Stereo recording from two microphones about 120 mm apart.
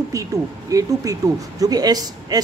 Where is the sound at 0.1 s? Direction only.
30° right (ahead or behind).